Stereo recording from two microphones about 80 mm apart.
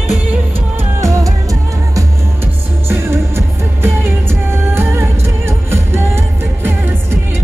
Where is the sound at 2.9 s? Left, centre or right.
Right.